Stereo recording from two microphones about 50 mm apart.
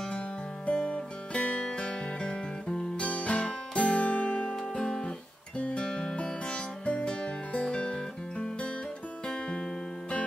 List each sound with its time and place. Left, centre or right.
0.7 s music: left
4.7 s guitar: centre
5.9 s music: centre